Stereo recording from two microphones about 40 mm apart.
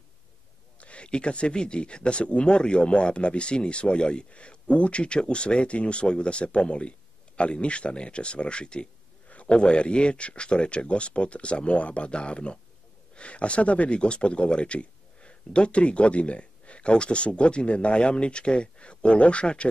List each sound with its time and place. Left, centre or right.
0.7 s speech: left